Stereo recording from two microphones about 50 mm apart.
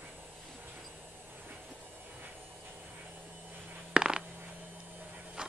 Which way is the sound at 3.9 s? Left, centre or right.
Centre.